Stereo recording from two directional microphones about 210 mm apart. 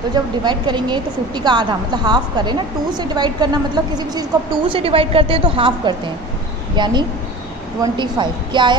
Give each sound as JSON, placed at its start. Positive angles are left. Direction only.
{"t": 0.4, "sound": "a woman's voice", "side_deg": -20}